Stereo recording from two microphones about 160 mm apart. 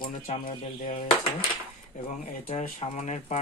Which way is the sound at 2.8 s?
45° left (ahead or behind).